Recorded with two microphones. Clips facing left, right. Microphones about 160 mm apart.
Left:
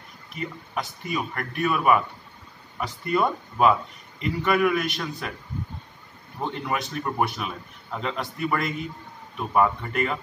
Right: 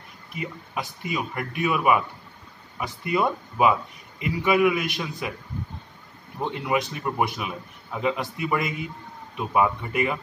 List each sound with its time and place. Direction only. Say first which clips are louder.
0.4 s a man's voice: left 1 dB; 5° right (ahead or behind)
6.4 s speech: right 3 dB; 5° right (ahead or behind)